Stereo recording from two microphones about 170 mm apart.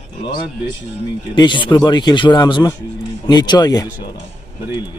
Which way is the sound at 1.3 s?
30° left (ahead or behind).